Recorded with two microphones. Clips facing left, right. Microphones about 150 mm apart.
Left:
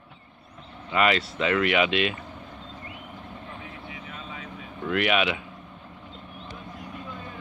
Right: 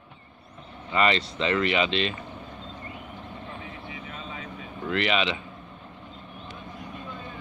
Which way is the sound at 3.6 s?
Centre (ahead or behind).